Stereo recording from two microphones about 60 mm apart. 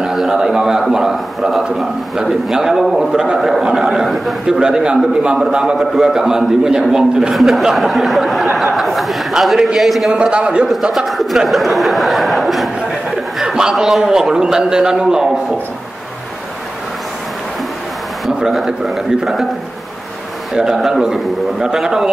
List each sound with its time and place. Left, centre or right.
0.0 s a man's voice: centre
10.1 s a man's voice: centre
10.7 s a man's voice: centre
18.2 s a sound: centre
18.7 s a man's voice: centre
20.5 s a man's voice: centre